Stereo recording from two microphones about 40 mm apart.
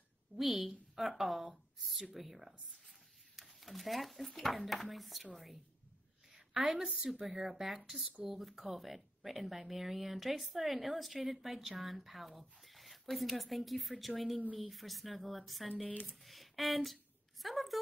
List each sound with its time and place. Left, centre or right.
0.4 s a woman's voice: centre